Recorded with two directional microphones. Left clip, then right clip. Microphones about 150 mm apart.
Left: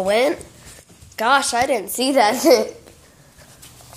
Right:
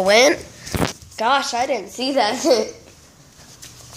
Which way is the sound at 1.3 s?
35° left (ahead or behind).